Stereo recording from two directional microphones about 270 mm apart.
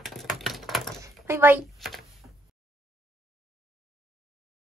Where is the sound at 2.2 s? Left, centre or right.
Centre.